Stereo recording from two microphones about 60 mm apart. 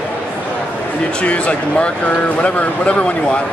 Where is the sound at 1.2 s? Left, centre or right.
Left.